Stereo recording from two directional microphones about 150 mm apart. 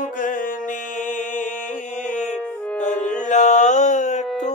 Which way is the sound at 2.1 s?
55° left (ahead or behind).